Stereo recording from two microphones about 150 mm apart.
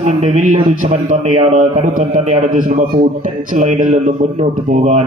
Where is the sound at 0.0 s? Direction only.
55° right (ahead or behind).